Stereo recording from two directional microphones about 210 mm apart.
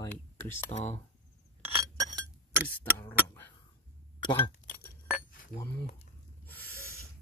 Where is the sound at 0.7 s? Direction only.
30° left (ahead or behind).